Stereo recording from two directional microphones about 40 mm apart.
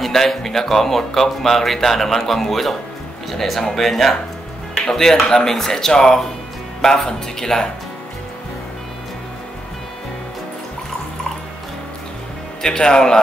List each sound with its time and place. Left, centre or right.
0.0 s speech: centre
12.6 s speech: left